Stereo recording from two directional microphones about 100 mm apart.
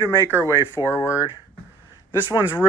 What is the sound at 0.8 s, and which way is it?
Speech, 30° left (ahead or behind).